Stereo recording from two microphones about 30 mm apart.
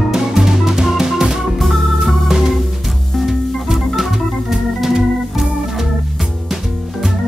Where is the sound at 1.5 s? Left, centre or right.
Centre.